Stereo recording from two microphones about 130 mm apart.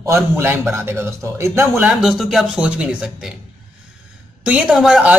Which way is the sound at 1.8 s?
Centre (ahead or behind).